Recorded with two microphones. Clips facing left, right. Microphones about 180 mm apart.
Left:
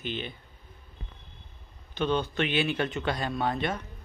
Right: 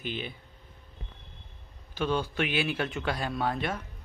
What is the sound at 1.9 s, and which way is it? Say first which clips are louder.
Speech: left 1 dB; 5° right (ahead or behind).